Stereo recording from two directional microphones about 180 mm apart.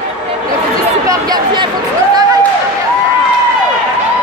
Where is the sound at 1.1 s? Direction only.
20° right (ahead or behind).